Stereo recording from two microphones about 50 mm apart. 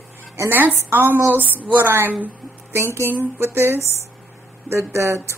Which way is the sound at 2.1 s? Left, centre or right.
Right.